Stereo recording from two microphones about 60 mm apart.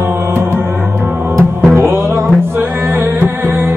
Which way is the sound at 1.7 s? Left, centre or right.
Right.